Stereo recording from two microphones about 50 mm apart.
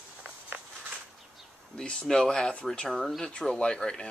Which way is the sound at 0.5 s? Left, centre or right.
Right.